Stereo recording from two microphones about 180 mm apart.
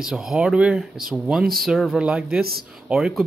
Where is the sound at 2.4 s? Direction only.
60° right (ahead or behind).